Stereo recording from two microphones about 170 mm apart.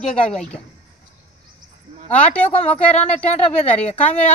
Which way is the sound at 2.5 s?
40° left (ahead or behind).